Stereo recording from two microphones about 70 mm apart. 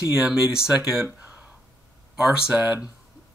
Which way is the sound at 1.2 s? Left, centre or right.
Right.